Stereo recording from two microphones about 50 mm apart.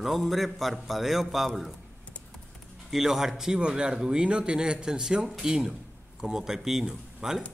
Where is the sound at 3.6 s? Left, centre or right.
Centre.